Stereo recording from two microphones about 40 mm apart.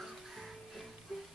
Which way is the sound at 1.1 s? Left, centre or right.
Centre.